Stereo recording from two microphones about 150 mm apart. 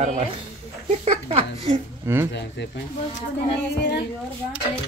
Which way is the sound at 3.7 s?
90° left.